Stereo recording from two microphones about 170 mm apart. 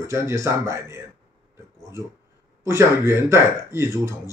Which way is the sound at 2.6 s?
15° right (ahead or behind).